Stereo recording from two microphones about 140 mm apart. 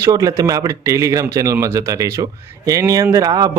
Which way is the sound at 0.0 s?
25° right (ahead or behind).